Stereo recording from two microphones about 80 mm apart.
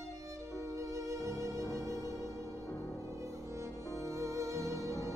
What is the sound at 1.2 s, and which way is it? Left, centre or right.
Music, right.